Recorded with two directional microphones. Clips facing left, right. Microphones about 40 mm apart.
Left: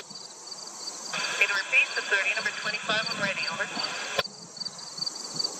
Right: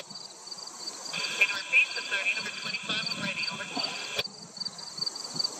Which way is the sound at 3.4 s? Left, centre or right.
Centre.